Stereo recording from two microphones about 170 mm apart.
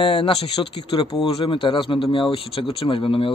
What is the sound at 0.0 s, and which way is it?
Mantra, 30° left (ahead or behind).